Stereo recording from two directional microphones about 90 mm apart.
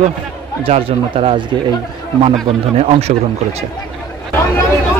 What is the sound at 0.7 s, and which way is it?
Speech, 90° right.